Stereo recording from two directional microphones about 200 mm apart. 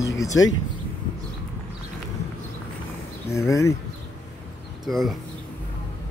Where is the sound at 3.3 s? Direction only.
15° left (ahead or behind).